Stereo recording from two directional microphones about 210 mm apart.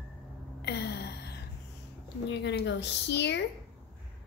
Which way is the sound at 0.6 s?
50° left (ahead or behind).